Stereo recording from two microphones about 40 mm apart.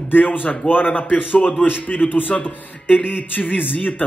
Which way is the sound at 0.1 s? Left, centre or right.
Left.